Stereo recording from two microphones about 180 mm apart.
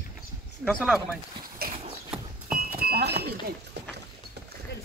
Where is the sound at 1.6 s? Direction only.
55° right (ahead or behind).